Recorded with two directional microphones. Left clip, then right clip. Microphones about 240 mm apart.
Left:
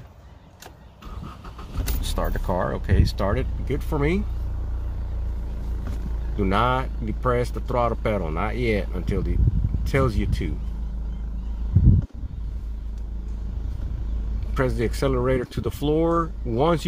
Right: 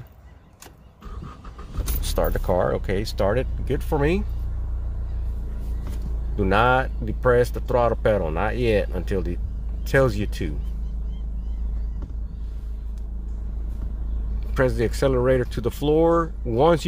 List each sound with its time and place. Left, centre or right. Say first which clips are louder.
2.0 s speech: right 5 dB; right
6.3 s speech: right 3 dB; centre
14.5 s speech: right 3 dB; centre